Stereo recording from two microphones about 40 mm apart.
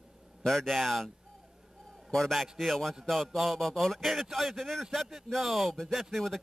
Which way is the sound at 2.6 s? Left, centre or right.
Centre.